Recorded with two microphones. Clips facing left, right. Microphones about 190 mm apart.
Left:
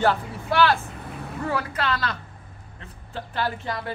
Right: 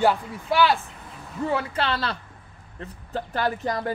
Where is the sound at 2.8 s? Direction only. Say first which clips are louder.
Right 5 dB; 40° right (ahead or behind).